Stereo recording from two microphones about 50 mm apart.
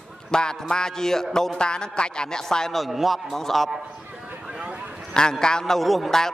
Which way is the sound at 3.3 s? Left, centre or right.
Centre.